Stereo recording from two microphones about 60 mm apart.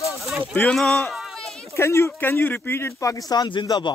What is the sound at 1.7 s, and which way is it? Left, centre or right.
Speech, left.